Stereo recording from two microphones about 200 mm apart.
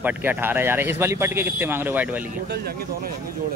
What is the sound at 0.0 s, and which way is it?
Speech, 10° right (ahead or behind).